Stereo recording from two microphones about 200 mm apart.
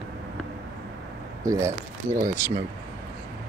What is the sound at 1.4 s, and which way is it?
Speech, 15° right (ahead or behind).